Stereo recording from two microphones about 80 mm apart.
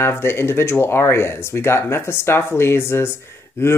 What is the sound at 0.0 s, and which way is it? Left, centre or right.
Speech, left.